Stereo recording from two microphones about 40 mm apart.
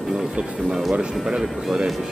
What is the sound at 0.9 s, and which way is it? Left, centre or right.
Speech, right.